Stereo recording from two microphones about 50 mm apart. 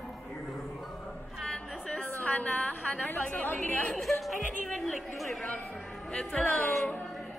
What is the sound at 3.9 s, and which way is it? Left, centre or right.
A woman's voice, centre.